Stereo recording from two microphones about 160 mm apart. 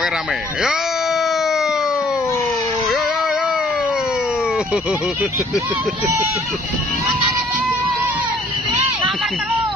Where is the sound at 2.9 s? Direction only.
5° right (ahead or behind).